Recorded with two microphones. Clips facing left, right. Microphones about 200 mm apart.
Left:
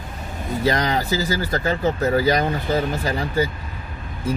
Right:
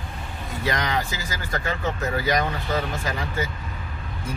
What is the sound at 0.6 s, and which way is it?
Speech, 35° left (ahead or behind).